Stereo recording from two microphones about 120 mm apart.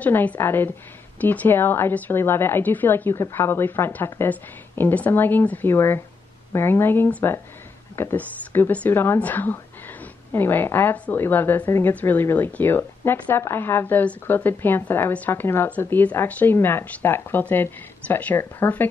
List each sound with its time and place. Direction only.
0.0 s a woman's voice: 15° left (ahead or behind)